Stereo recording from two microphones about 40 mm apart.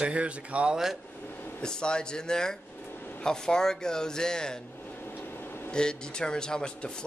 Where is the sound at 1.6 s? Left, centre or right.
Left.